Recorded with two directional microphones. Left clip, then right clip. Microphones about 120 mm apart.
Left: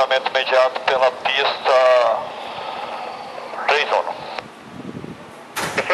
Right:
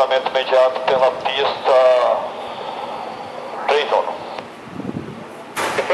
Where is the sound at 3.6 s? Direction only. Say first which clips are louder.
Right 1 dB; 20° left (ahead or behind).